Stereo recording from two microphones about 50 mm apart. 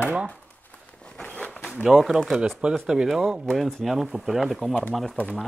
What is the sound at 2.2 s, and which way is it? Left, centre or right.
Speech, centre.